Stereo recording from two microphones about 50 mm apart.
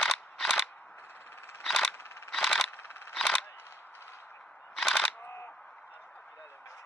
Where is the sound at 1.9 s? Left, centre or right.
Left.